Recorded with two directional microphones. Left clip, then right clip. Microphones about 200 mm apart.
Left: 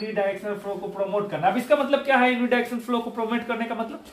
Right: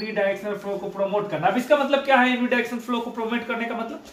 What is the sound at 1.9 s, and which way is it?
A man's voice, 25° left (ahead or behind).